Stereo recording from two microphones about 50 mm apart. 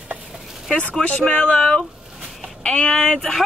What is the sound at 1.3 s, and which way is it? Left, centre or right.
Speech, centre.